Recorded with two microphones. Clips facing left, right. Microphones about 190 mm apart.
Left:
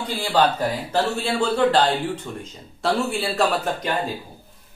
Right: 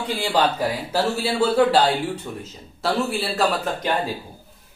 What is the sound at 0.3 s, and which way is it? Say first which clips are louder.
A man's voice: left 2 dB; 10° right (ahead or behind).